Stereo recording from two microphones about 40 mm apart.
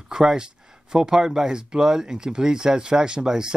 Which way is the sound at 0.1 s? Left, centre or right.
Centre.